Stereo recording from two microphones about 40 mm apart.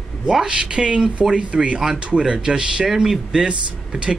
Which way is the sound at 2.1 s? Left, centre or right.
Centre.